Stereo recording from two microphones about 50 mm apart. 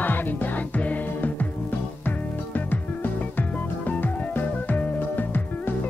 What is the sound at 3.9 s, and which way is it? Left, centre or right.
Music, left.